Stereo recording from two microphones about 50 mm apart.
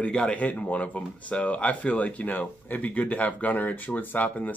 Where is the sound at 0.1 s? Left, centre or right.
Left.